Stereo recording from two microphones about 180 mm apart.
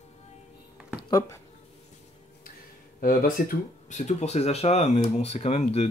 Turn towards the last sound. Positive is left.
turn(degrees=35)  # may be behind; listen again after turning